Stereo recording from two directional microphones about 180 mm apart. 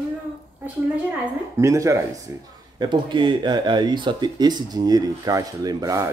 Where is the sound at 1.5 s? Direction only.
15° right (ahead or behind).